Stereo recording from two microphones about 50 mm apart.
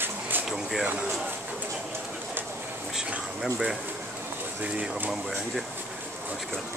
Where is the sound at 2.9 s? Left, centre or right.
Centre.